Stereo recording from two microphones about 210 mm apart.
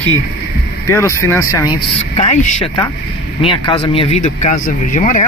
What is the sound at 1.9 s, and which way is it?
Speech, 30° left (ahead or behind).